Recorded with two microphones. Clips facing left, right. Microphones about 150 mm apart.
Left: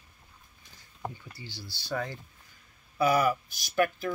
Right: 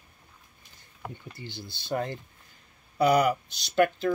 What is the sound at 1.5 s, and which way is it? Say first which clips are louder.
Speech: right 3 dB; 20° right (ahead or behind).